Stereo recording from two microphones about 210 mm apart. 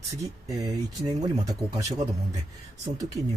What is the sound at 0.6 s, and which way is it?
Speech, 20° right (ahead or behind).